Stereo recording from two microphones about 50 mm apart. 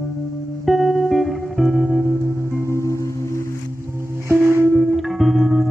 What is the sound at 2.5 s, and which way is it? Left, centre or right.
Music, left.